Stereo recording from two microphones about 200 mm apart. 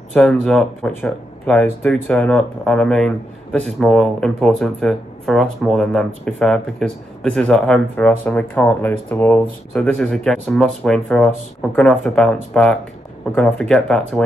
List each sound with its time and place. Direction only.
0.1 s speech: 5° left (ahead or behind)